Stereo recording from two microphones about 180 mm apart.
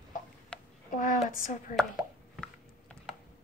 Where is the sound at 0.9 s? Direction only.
45° left (ahead or behind).